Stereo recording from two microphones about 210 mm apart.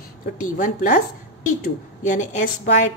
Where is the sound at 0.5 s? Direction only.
40° left (ahead or behind).